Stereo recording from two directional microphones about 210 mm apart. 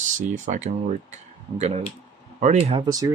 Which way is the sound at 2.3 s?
35° right (ahead or behind).